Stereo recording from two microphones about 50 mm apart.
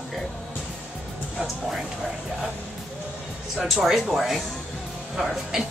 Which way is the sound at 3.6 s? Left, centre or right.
Centre.